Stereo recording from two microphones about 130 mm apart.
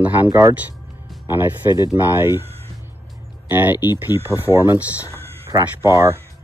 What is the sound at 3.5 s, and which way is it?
Speech, 15° right (ahead or behind).